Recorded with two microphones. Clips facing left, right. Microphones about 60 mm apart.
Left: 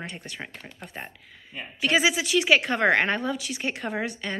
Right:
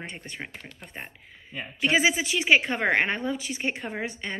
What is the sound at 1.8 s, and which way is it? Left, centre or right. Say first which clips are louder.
A woman's voice: even; right.